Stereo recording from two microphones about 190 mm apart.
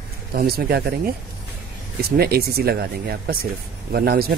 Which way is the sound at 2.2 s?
55° right (ahead or behind).